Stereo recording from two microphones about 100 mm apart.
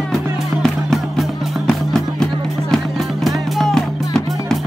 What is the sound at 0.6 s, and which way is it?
Music, 5° left (ahead or behind).